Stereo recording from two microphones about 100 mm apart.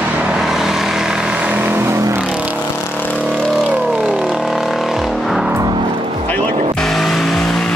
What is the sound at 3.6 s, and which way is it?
Vehicle, 10° right (ahead or behind).